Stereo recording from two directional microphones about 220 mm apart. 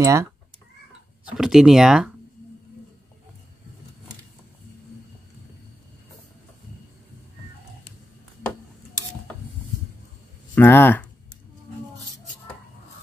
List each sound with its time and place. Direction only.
0.0 s speech: 15° right (ahead or behind)
1.2 s speech: centre (ahead or behind)
8.4 s a sound: 10° left (ahead or behind)
10.5 s speech: 10° left (ahead or behind)